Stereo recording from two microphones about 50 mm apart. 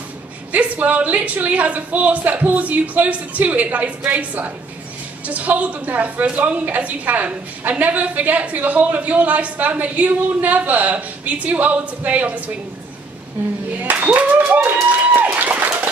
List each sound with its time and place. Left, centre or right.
0.5 s a woman's voice: right
13.7 s a woman's voice: right
15.5 s a sound: right